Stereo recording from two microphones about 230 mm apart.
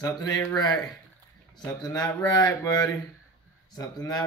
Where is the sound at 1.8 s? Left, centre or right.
Centre.